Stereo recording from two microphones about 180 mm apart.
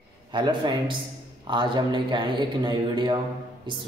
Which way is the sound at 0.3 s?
25° right (ahead or behind).